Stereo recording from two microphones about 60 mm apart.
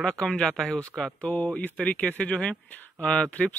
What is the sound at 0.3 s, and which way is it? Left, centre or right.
Speech, centre.